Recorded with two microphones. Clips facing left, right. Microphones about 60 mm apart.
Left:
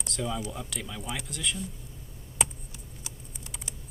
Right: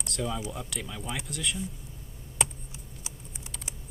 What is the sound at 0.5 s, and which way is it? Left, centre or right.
Speech, centre.